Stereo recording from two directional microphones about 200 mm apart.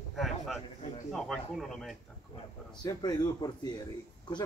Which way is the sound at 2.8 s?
20° left (ahead or behind).